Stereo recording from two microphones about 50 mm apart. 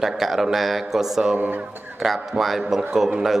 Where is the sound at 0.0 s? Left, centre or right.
Centre.